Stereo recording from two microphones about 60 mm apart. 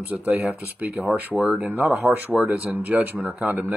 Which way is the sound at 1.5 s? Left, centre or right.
Right.